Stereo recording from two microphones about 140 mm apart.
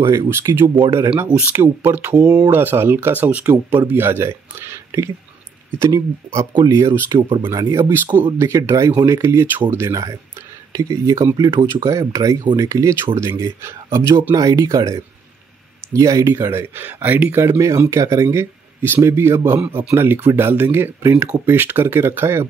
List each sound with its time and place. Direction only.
0.0 s speech: 35° right (ahead or behind)
0.3 s speech: 20° right (ahead or behind)
2.2 s speech: 30° right (ahead or behind)
2.5 s speech: 15° right (ahead or behind)